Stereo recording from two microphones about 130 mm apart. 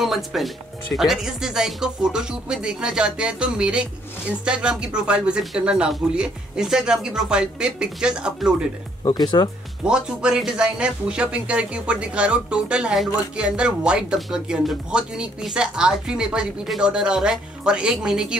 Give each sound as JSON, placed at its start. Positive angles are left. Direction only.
{"t": 0.0, "sound": "speech", "side_deg": 0}
{"t": 9.0, "sound": "speech", "side_deg": 35}
{"t": 9.8, "sound": "speech", "side_deg": -5}